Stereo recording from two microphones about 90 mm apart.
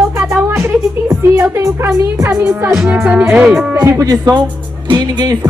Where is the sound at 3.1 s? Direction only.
20° right (ahead or behind).